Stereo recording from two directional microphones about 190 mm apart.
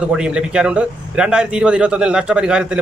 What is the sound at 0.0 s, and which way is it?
A man's voice, 5° right (ahead or behind).